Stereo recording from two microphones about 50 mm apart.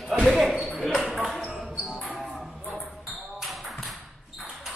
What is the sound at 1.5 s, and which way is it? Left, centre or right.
Basketball bounce, right.